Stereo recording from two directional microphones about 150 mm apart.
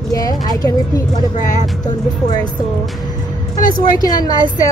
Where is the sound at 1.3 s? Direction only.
50° left (ahead or behind).